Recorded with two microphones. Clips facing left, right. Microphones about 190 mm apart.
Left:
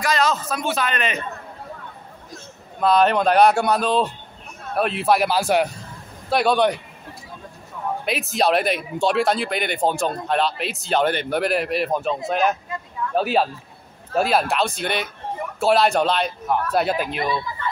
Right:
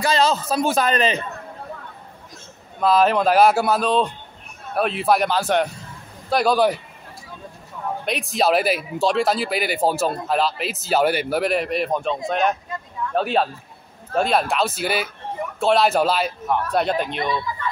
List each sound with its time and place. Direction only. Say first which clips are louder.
0.0 s a man's voice: right 2 dB; 30° right (ahead or behind)
2.8 s speech: even; centre (ahead or behind)
8.0 s speech: even; centre (ahead or behind)